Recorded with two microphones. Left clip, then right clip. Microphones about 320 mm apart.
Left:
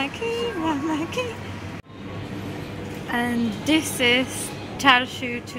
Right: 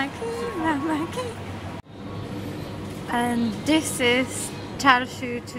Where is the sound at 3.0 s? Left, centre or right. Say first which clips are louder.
Even; centre.